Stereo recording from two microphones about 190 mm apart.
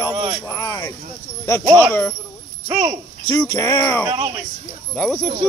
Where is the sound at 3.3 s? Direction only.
15° left (ahead or behind).